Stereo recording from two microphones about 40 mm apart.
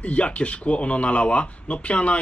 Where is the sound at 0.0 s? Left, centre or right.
Left.